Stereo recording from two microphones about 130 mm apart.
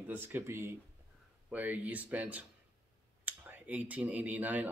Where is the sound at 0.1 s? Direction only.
15° right (ahead or behind).